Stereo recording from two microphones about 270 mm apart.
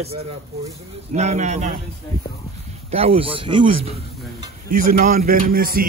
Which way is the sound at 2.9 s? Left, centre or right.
Right.